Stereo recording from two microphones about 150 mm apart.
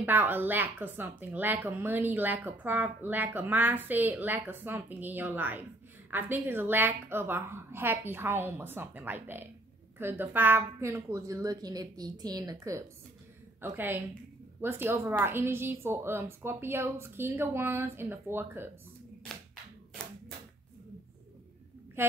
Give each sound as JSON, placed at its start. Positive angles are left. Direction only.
{"t": 0.0, "sound": "a woman's voice", "side_deg": -15}
{"t": 22.0, "sound": "a woman's voice", "side_deg": -15}